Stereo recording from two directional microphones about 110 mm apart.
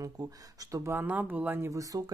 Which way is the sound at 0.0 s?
35° right (ahead or behind).